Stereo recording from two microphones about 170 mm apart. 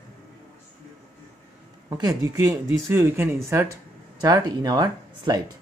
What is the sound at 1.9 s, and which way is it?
Speech, 20° right (ahead or behind).